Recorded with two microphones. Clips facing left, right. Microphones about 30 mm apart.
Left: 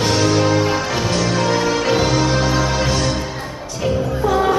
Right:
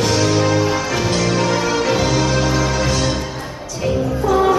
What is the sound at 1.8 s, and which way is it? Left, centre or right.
Music, centre.